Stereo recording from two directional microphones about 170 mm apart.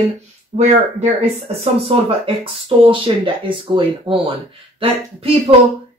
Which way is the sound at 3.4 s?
30° right (ahead or behind).